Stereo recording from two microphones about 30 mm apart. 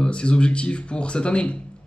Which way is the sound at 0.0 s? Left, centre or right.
Left.